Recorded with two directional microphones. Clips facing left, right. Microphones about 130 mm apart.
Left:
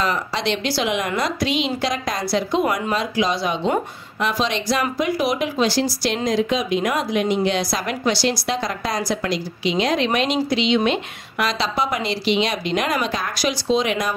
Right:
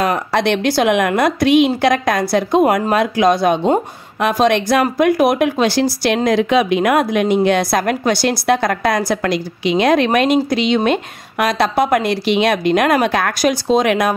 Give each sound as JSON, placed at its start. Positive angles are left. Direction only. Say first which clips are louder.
{"t": 0.0, "sound": "speech", "louder": "right 6 dB", "side_deg": -55}